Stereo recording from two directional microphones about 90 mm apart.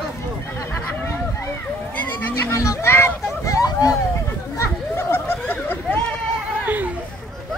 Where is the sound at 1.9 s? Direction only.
20° left (ahead or behind).